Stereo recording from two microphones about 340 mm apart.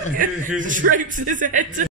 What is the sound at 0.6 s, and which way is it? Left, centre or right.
Snicker, right.